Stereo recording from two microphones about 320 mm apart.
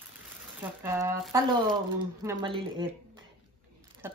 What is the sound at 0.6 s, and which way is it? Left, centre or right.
Mantra, centre.